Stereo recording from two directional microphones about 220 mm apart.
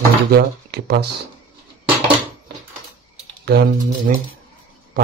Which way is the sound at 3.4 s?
45° right (ahead or behind).